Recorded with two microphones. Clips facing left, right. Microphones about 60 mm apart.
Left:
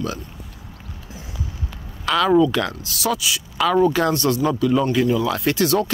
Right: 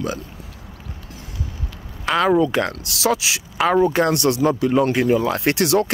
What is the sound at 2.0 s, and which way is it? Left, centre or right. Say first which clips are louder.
Speech: right 1 dB; right.